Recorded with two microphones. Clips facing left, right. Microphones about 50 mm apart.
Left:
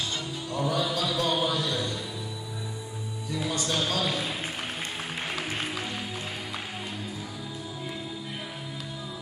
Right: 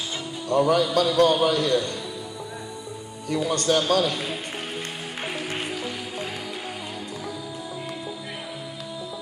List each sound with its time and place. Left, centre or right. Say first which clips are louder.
0.5 s a man's voice: right 8 dB; right
3.3 s a man's voice: right 8 dB; right